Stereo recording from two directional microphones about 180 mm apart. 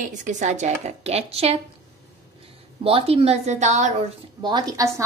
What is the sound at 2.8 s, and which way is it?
Speech, 30° right (ahead or behind).